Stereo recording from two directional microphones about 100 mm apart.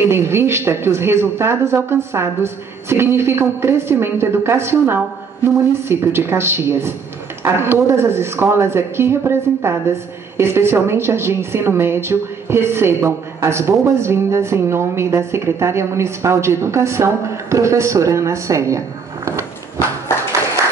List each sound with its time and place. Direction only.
0.0 s speech: 25° right (ahead or behind)